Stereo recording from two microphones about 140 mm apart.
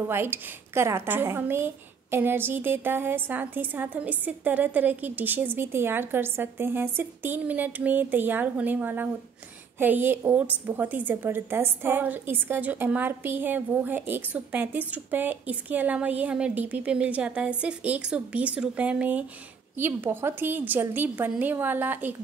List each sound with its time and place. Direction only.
0.1 s a woman's voice: 15° right (ahead or behind)